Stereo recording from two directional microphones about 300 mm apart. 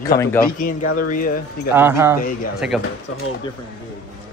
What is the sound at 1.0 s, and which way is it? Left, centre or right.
Speech, left.